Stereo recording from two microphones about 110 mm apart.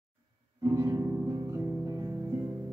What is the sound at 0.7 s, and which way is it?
Guitar, 30° right (ahead or behind).